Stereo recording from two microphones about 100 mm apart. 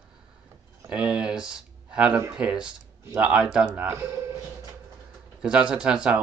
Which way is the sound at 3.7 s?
25° right (ahead or behind).